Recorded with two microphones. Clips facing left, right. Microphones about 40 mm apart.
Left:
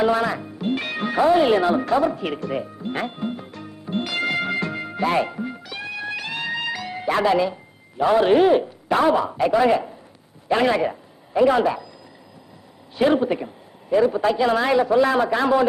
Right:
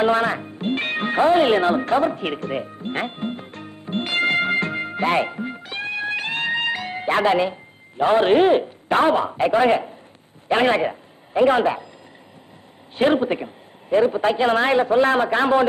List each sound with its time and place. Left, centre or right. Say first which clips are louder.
0.0 s music: right 1 dB; right
8.0 s a woman's voice: even; right
12.9 s a woman's voice: even; right